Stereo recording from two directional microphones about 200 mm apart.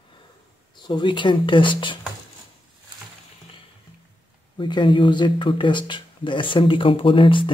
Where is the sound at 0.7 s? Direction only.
20° left (ahead or behind).